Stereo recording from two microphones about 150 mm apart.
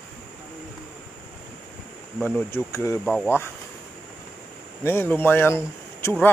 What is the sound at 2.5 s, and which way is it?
Speech, 20° left (ahead or behind).